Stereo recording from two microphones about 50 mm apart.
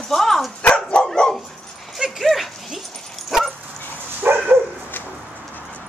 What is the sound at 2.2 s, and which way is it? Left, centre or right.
Dog, centre.